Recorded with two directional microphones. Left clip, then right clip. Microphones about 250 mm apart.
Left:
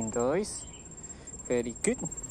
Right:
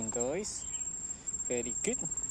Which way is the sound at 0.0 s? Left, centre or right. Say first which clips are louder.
Left 6 dB; centre.